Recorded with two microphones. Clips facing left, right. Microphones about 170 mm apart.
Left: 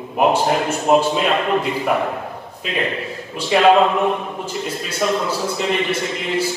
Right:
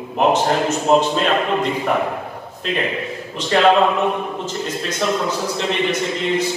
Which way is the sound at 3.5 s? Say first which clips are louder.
Even; 10° left (ahead or behind).